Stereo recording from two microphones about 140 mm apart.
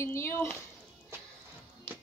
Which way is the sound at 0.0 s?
20° left (ahead or behind).